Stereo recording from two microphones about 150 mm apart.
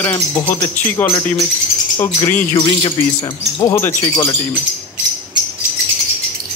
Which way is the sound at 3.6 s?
15° left (ahead or behind).